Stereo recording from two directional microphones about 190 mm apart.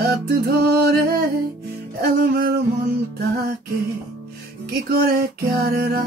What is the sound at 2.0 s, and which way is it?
Music, 50° right (ahead or behind).